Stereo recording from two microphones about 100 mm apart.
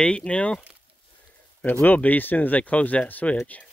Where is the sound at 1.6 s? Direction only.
15° left (ahead or behind).